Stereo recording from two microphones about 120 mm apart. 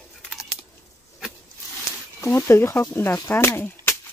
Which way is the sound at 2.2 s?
20° left (ahead or behind).